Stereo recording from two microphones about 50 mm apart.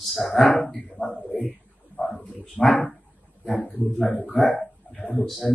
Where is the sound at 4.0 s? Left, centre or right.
Left.